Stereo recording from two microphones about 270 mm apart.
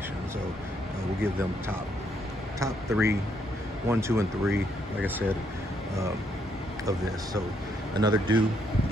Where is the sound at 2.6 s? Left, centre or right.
Centre.